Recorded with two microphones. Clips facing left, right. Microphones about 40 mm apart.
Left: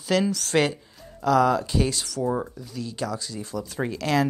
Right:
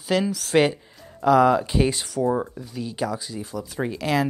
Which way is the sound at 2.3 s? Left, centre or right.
Centre.